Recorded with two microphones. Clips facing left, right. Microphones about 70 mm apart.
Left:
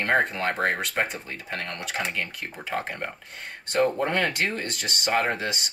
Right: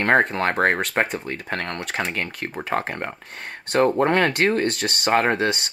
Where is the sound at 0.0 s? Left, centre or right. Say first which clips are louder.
Right 5 dB; right.